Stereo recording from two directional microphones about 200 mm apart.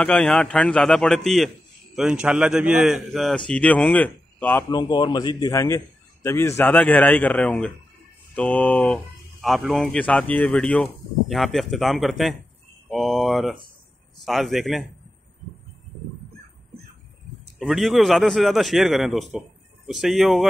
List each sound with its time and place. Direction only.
0.0 s a man's voice: 5° left (ahead or behind)
17.6 s speech: centre (ahead or behind)